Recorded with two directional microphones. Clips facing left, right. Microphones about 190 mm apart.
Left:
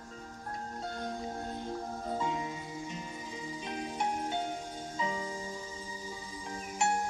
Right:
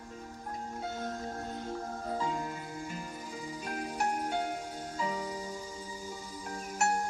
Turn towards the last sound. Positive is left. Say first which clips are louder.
# even
turn(degrees=0)  # may be behind; listen again after turning